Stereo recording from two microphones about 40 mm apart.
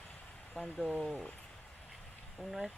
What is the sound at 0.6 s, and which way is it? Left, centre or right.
Speech, centre.